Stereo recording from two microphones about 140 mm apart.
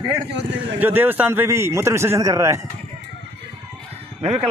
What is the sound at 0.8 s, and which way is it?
A man's voice, 15° right (ahead or behind).